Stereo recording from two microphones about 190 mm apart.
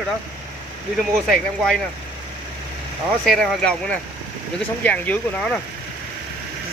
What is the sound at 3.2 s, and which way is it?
Speech, 5° left (ahead or behind).